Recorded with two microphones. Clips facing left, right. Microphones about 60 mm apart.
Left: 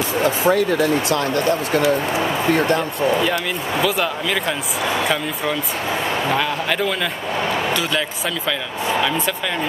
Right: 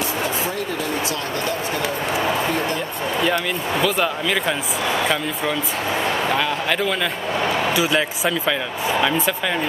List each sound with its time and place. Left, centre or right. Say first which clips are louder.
1.1 s speech: left 6 dB; left
3.8 s speech: even; centre